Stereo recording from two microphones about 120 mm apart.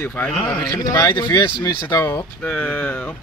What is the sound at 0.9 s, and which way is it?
Speech, 30° left (ahead or behind).